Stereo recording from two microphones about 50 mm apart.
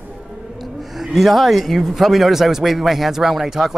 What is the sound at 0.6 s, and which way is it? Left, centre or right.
Speech, centre.